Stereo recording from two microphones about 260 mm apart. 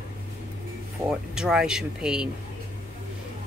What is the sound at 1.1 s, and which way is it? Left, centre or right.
Speech, centre.